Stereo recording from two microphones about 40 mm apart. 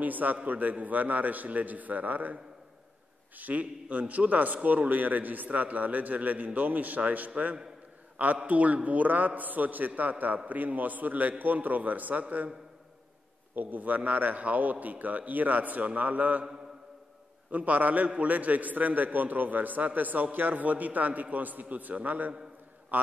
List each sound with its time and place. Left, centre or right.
0.0 s a man's voice: right
3.3 s a man's voice: right
13.6 s a man's voice: right
17.5 s a man's voice: right